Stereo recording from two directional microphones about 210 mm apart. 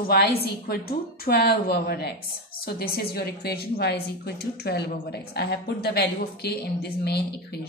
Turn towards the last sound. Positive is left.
turn(degrees=50)  # may be behind; listen again after turning